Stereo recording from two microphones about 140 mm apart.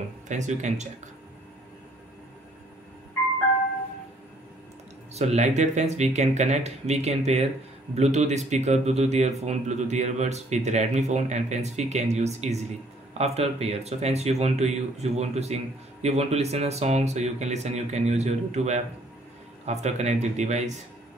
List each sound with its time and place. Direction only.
0.3 s speech: 60° right (ahead or behind)
5.1 s speech: 50° right (ahead or behind)